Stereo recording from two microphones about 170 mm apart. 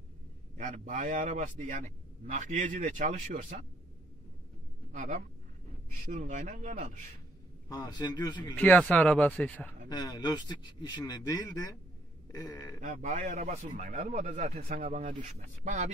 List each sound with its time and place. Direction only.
0.6 s speech: 45° right (ahead or behind)
4.9 s speech: 45° right (ahead or behind)
7.6 s speech: 20° left (ahead or behind)
8.5 s speech: 5° left (ahead or behind)
9.8 s speech: 25° left (ahead or behind)
12.8 s speech: 50° right (ahead or behind)